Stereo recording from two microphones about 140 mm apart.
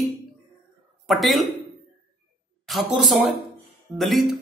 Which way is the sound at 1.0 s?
Centre (ahead or behind).